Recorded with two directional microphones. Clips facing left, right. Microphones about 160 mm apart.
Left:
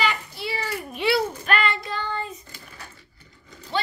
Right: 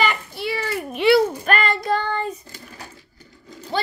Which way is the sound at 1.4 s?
45° right (ahead or behind).